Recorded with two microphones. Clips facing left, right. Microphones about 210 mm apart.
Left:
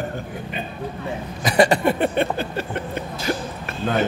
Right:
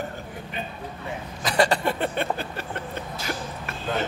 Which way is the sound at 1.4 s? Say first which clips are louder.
Left 5 dB; 15° left (ahead or behind).